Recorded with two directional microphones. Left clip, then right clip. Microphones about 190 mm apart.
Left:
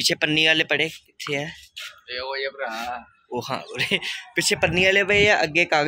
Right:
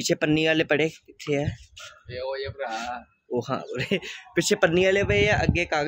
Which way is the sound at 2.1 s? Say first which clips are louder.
Left 3 dB; 20° right (ahead or behind).